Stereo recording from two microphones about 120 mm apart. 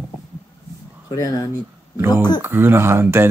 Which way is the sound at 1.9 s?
20° right (ahead or behind).